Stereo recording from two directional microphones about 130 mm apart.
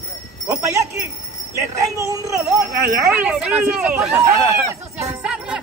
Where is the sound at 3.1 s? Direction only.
10° right (ahead or behind).